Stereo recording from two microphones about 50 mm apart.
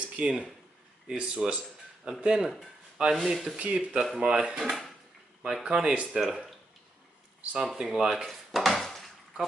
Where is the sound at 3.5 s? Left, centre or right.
Right.